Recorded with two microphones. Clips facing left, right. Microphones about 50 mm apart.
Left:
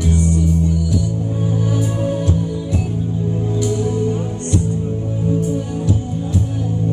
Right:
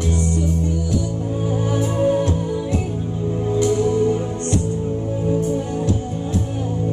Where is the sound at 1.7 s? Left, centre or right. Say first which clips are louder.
Right 2 dB; right.